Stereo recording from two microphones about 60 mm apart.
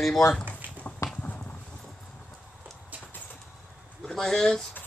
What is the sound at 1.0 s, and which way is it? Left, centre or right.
Clip-clop, left.